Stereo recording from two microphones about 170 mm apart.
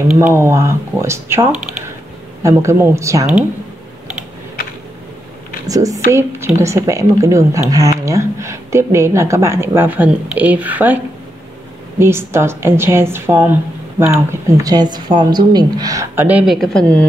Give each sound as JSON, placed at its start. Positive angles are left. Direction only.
{"t": 0.1, "sound": "a woman's voice", "side_deg": -15}
{"t": 5.7, "sound": "a woman's voice", "side_deg": -20}
{"t": 12.0, "sound": "a woman's voice", "side_deg": -15}